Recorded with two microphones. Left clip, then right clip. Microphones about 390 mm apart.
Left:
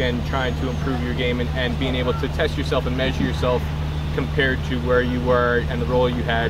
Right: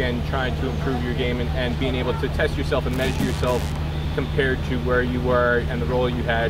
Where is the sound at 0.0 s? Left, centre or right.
Centre.